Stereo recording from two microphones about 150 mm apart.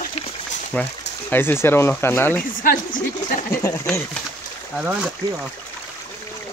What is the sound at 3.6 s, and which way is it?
Speech, 20° left (ahead or behind).